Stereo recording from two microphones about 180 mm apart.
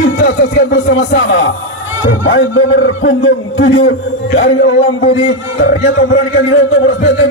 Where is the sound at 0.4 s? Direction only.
70° left (ahead or behind).